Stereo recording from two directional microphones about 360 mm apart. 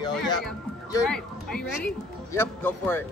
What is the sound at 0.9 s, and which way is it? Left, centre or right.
A man's voice, centre.